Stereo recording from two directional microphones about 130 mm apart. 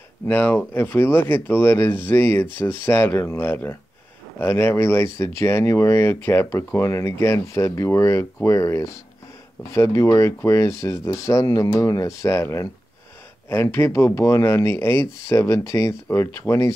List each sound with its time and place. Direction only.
0.3 s speech: 15° left (ahead or behind)